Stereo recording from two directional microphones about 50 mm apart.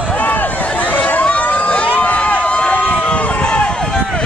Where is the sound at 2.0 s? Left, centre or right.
Left.